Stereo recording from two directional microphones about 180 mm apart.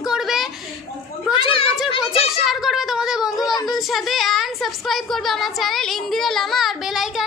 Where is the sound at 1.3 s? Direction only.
30° left (ahead or behind).